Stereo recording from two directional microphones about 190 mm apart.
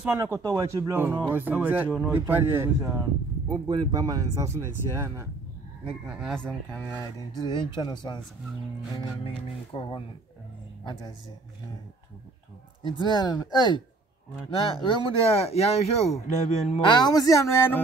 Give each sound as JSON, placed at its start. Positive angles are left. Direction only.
{"t": 0.0, "sound": "speech", "side_deg": -10}
{"t": 7.3, "sound": "speech", "side_deg": 20}
{"t": 13.0, "sound": "speech", "side_deg": 25}
{"t": 16.9, "sound": "speech", "side_deg": 20}